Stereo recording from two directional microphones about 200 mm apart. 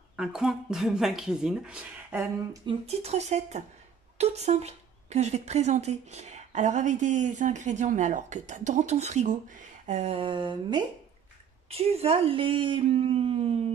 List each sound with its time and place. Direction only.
0.1 s speech: 5° right (ahead or behind)
2.6 s speech: 30° right (ahead or behind)